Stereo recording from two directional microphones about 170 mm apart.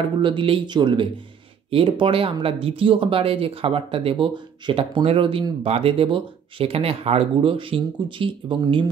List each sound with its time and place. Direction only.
0.2 s speech: 30° right (ahead or behind)